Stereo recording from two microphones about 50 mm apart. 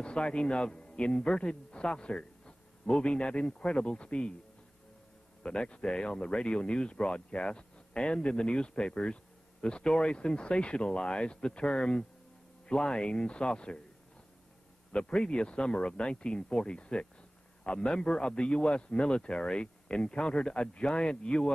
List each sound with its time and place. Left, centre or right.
0.0 s speech: left
5.4 s speech: centre
14.9 s speech: centre